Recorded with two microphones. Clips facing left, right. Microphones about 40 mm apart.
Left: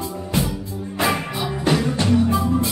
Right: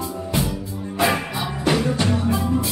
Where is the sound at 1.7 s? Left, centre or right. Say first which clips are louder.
Left 1 dB; centre.